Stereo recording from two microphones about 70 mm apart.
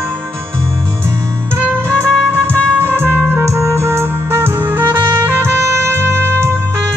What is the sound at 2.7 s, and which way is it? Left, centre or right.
Music, right.